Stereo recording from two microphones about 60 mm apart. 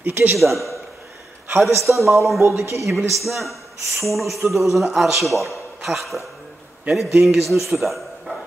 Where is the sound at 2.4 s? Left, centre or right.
Right.